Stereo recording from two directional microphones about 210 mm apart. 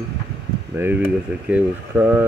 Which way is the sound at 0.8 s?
10° right (ahead or behind).